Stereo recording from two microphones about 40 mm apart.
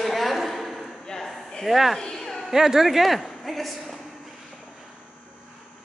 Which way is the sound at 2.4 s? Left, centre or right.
Centre.